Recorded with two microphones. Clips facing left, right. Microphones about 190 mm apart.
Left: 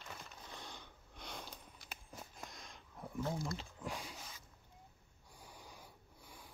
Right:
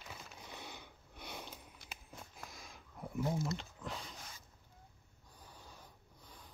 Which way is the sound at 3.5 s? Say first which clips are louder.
Even; 10° left (ahead or behind).